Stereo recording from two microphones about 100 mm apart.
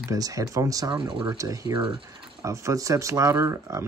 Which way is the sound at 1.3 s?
35° right (ahead or behind).